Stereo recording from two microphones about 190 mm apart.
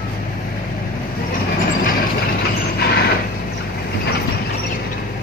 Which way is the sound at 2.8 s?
60° left (ahead or behind).